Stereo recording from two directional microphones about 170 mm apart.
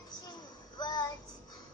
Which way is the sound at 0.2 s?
25° left (ahead or behind).